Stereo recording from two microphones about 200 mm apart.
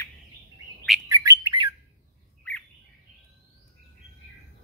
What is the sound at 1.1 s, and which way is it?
Bird, 20° right (ahead or behind).